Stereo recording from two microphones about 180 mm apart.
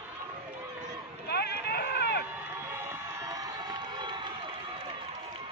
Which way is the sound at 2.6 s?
15° right (ahead or behind).